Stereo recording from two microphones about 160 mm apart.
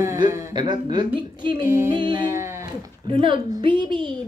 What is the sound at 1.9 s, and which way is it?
Speech, 30° right (ahead or behind).